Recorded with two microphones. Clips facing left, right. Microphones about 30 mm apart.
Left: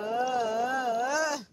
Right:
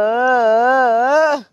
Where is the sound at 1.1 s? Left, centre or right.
Right.